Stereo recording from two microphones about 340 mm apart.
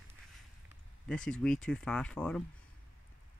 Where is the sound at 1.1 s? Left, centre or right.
Centre.